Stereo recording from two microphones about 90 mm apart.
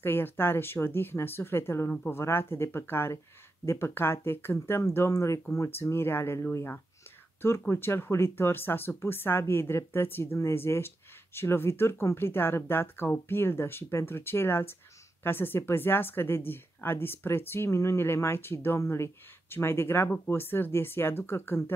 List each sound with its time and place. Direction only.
0.0 s speech: 25° left (ahead or behind)